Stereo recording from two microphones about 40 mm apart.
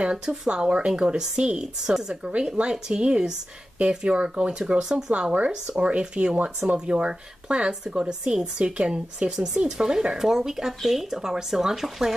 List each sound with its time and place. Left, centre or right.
0.0 s speech: right
2.2 s speech: right
4.1 s speech: right
5.1 s speech: right; by 12.1 s centre